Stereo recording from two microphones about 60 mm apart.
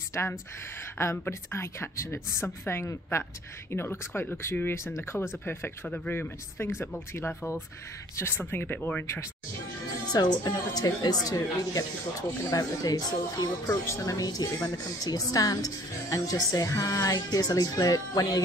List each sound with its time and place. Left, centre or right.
0.1 s a woman's voice: left
8.4 s speech: left
10.1 s speech: left
13.8 s speech: left